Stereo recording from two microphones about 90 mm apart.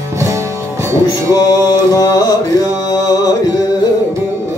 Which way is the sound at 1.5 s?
40° left (ahead or behind).